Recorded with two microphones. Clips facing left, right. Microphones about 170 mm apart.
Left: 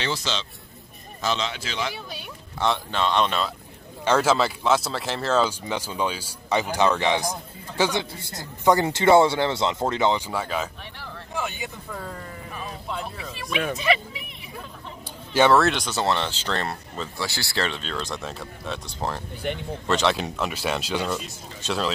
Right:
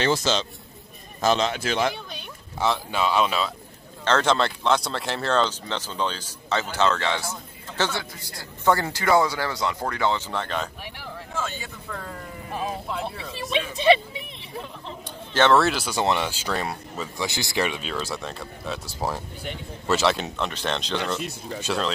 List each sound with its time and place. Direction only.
0.0 s a man's voice: 45° right (ahead or behind)
2.0 s speech: centre (ahead or behind)
4.0 s speech: 10° left (ahead or behind)
12.0 s speech: centre (ahead or behind)
13.3 s speech: 25° right (ahead or behind)
15.3 s speech: 10° left (ahead or behind)
15.6 s speech: 5° right (ahead or behind)
17.3 s speech: 20° right (ahead or behind); by 21.2 s 10° left (ahead or behind)
21.2 s speech: 60° right (ahead or behind)
21.6 s speech: centre (ahead or behind)